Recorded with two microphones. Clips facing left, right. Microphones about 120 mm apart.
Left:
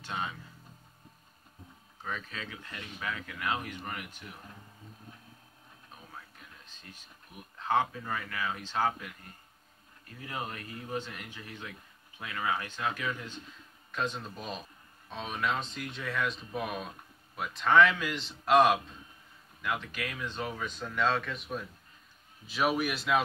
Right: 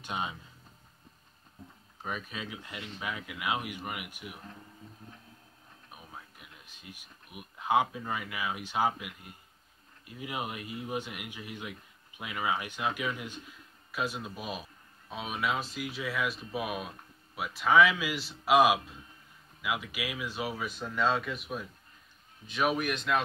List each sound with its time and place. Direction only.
0.0 s speech: 15° right (ahead or behind)
2.0 s speech: 15° right (ahead or behind)
5.9 s a man's voice: 15° right (ahead or behind); by 23.2 s 5° left (ahead or behind)